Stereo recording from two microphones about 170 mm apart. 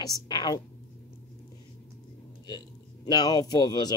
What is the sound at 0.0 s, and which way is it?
Speech, 25° left (ahead or behind).